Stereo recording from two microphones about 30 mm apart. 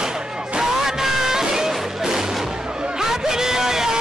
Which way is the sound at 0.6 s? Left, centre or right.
Centre.